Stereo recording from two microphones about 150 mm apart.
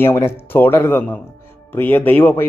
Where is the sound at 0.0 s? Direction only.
15° left (ahead or behind).